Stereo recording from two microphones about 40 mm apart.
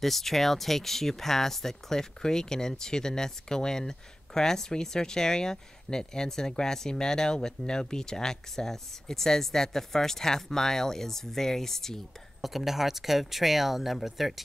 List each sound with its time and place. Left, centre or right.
0.0 s speech: centre
12.4 s speech: centre